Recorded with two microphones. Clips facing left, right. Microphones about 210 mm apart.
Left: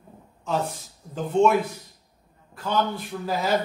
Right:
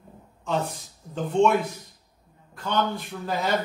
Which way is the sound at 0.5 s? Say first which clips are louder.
Even; centre (ahead or behind).